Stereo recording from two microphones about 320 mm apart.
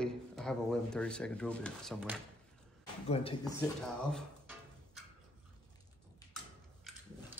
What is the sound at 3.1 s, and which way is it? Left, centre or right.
Speech, centre.